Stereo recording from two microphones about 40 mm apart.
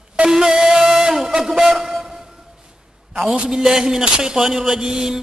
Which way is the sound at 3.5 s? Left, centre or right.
Centre.